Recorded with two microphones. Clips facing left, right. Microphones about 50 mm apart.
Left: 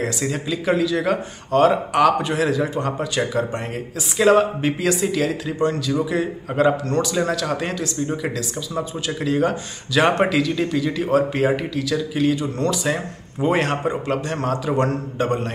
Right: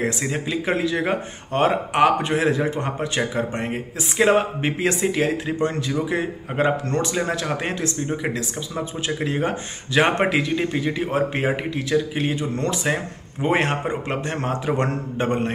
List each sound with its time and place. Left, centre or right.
0.0 s speech: right